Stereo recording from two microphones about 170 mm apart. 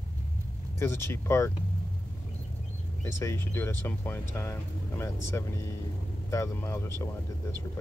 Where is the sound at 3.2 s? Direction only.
15° left (ahead or behind).